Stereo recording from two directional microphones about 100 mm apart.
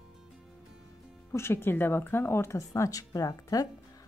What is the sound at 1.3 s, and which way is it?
Speech, 25° left (ahead or behind).